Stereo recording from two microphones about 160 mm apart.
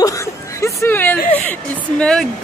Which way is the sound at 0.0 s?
20° left (ahead or behind).